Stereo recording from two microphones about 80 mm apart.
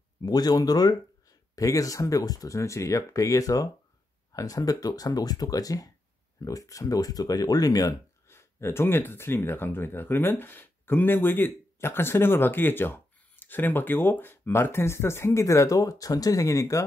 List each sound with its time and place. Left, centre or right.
0.2 s speech: left
8.3 s speech: left